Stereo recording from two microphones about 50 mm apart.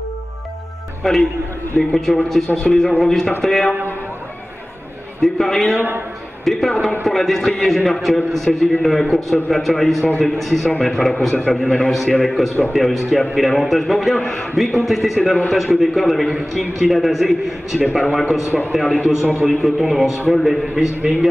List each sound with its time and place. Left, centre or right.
1.0 s speech: centre
5.2 s a man's voice: centre
5.8 s speech: right
6.4 s a man's voice: centre